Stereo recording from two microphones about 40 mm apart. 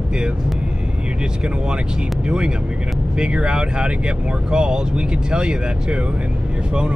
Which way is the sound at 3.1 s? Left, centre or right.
Right.